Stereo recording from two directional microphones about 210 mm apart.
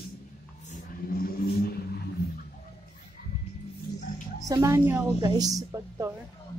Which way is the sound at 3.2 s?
50° left (ahead or behind).